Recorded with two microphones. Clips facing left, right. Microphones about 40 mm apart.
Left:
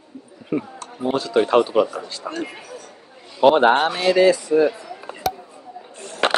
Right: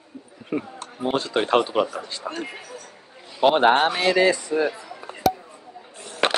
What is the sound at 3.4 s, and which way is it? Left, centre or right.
Speech, centre.